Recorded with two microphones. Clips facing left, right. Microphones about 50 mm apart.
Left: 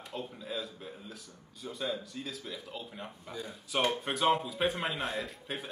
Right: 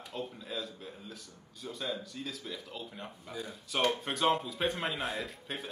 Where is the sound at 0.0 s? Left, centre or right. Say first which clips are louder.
Even; centre.